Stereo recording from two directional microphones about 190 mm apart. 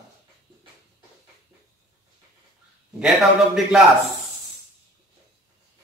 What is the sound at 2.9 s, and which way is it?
Speech, centre (ahead or behind).